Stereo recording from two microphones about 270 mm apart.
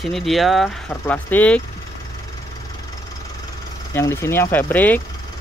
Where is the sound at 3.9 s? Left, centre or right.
Centre.